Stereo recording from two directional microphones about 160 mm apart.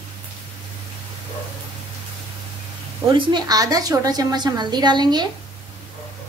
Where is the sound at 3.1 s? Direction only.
25° right (ahead or behind).